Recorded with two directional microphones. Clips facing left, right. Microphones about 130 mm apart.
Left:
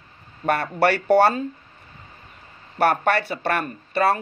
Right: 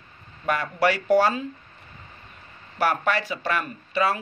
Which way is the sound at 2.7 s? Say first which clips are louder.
Left 4 dB; 60° left (ahead or behind).